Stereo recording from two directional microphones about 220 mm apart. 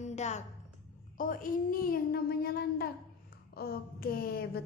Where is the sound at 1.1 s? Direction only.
40° left (ahead or behind).